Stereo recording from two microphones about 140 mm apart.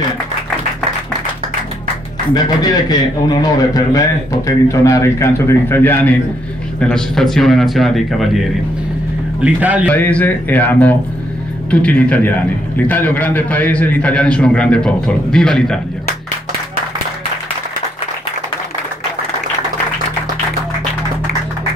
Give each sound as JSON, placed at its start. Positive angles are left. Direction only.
{"t": 2.3, "sound": "a man's voice", "side_deg": 30}
{"t": 6.8, "sound": "speech", "side_deg": 5}
{"t": 9.4, "sound": "speech", "side_deg": -10}
{"t": 9.9, "sound": "a man's voice", "side_deg": 10}